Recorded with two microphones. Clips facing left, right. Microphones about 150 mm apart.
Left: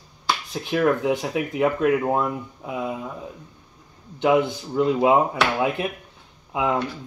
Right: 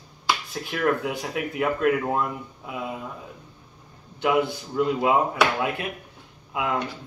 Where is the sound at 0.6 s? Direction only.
25° left (ahead or behind).